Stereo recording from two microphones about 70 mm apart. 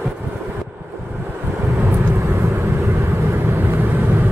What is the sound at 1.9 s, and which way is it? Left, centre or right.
Vehicle, right.